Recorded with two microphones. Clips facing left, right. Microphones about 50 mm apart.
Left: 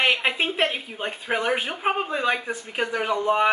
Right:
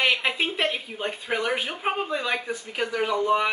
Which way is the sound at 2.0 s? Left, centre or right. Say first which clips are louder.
Left 3 dB; left.